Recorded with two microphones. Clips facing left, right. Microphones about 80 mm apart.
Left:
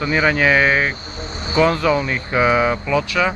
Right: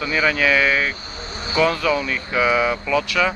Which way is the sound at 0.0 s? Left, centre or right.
Left.